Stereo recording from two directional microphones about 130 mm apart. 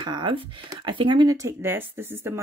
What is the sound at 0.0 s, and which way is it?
Speech, 35° right (ahead or behind).